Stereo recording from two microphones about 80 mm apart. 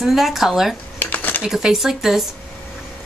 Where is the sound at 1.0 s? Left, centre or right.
Left.